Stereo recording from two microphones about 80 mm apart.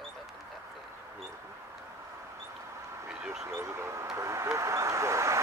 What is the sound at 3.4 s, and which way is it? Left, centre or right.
Speech, right.